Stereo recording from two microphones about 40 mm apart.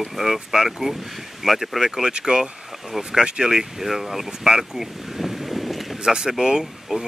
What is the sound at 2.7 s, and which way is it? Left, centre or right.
Speech, centre.